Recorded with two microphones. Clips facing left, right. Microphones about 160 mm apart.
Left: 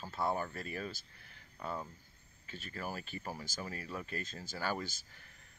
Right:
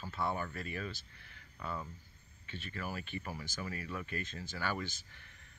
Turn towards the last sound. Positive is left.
turn(degrees=40)  # may be behind; listen again after turning